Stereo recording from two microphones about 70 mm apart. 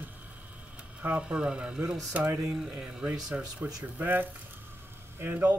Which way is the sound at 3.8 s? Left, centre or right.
Right.